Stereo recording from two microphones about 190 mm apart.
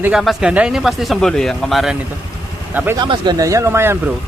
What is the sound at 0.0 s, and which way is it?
A man's voice, centre (ahead or behind).